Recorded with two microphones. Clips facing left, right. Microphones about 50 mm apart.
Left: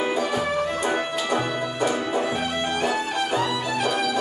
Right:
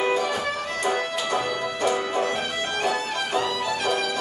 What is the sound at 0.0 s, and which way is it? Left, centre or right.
Music, centre.